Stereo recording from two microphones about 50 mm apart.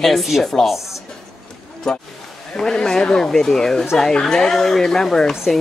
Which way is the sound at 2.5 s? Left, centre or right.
Centre.